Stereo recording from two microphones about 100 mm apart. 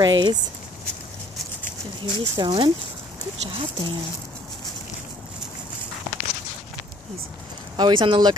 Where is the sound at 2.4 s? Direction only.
50° right (ahead or behind).